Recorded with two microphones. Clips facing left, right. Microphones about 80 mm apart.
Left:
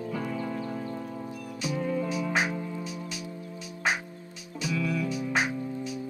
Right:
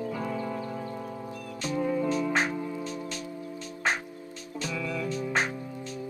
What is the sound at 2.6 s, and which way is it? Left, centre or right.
Music, centre.